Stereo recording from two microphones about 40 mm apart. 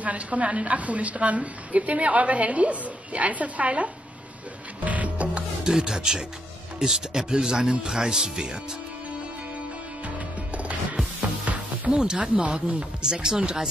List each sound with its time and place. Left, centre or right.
0.0 s a woman's voice: right
4.8 s music: right
5.6 s a man's voice: centre
10.0 s music: right
11.9 s speech: centre
13.0 s a man's voice: centre